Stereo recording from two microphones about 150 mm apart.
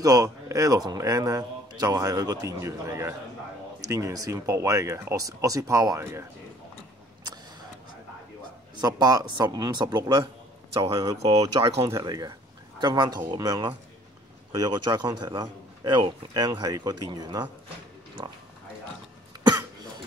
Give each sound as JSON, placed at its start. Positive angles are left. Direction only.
{"t": 0.0, "sound": "a man's voice", "side_deg": -25}
{"t": 8.8, "sound": "a man's voice", "side_deg": -25}